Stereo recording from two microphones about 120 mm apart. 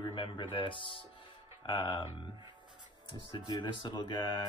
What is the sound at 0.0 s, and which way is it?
Speech, 45° left (ahead or behind).